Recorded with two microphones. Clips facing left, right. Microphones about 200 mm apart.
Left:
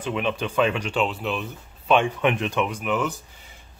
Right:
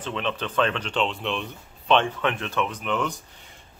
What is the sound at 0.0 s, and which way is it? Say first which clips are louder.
Speech: left 3 dB; 10° left (ahead or behind).